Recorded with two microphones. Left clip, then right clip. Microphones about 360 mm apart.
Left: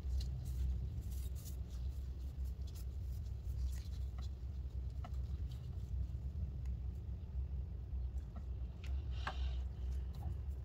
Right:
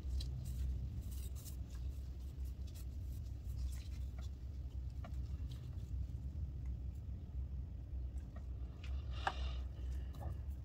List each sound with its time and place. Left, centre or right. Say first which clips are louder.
9.2 s vehicle: right 5 dB; centre